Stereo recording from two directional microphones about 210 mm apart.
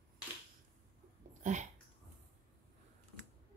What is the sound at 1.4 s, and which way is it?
Dog, 35° right (ahead or behind).